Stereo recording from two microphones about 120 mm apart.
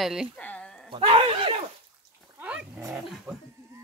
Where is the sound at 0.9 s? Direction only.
50° right (ahead or behind).